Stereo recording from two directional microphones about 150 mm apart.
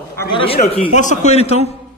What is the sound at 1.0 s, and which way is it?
Speech, 50° left (ahead or behind).